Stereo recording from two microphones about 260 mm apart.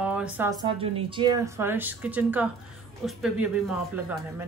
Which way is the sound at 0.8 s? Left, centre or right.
Centre.